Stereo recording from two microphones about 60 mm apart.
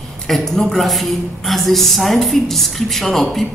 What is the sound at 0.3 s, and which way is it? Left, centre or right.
A woman's voice, centre.